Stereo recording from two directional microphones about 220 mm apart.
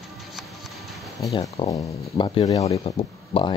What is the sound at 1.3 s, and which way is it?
Speech, 20° left (ahead or behind).